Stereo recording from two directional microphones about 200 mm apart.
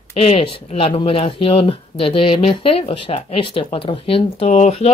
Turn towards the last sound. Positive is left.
turn(degrees=30)  # may be behind; listen again after turning